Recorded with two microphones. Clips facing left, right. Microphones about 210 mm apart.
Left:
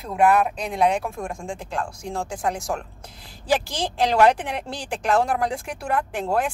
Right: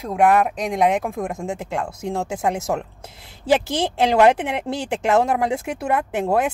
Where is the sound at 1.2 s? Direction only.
20° right (ahead or behind).